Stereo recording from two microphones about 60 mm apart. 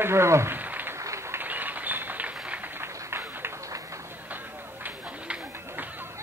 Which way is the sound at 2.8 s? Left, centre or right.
Right.